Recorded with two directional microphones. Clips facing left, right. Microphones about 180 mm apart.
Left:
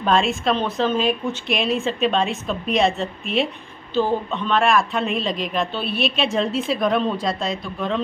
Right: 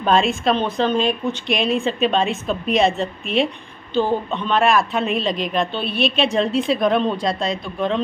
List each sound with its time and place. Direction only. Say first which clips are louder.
0.0 s a woman's voice: right 2 dB; centre (ahead or behind)